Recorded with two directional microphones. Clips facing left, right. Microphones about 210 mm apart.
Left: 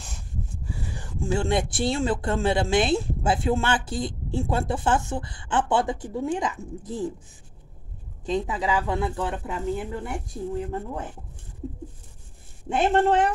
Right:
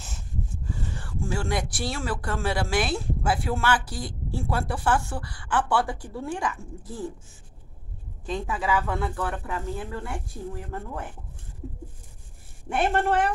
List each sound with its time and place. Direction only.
0.8 s a woman's voice: 15° left (ahead or behind)
8.3 s a woman's voice: 20° left (ahead or behind)
12.6 s speech: 20° left (ahead or behind)